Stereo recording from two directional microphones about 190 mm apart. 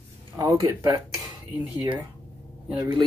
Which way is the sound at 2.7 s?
20° right (ahead or behind).